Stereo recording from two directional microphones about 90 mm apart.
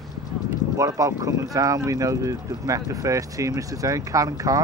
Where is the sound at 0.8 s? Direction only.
40° right (ahead or behind).